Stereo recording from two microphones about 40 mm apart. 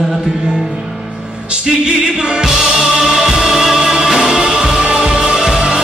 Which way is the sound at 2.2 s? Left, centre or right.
Right.